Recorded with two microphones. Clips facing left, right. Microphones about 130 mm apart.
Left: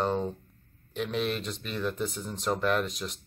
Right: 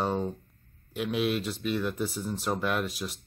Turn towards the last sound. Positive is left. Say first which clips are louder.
# left 2 dB
turn(degrees=-5)  # may be behind; listen again after turning